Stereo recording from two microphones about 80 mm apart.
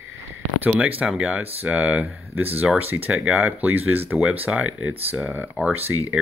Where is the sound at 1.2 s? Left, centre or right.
Centre.